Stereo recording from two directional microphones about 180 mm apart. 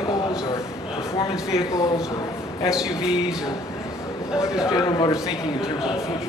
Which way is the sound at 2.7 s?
5° right (ahead or behind).